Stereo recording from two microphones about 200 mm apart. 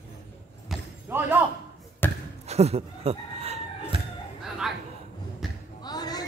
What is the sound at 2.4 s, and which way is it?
Chicken, 30° right (ahead or behind).